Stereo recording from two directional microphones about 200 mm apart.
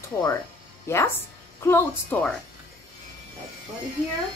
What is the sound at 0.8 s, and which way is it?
Speech, 10° left (ahead or behind).